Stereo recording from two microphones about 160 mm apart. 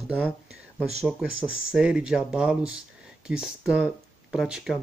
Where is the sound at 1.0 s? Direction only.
Centre (ahead or behind).